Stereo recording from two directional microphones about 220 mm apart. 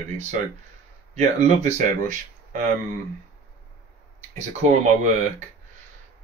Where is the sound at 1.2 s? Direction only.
30° right (ahead or behind).